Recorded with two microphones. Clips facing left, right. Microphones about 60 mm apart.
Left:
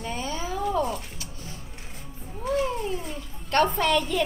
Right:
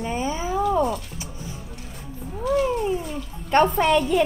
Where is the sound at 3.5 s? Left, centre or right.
Centre.